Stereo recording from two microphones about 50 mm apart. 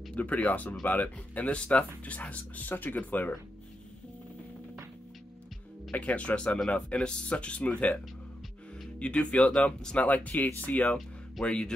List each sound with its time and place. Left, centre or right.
0.1 s speech: left
5.9 s speech: left
9.0 s speech: left
9.9 s speech: left
11.4 s speech: centre